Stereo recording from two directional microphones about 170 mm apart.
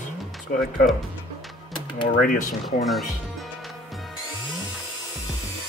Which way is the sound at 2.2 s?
50° left (ahead or behind).